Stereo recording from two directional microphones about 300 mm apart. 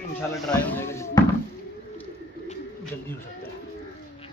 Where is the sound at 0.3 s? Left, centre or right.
Centre.